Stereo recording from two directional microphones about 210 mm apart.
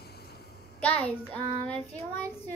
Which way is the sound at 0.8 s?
5° left (ahead or behind).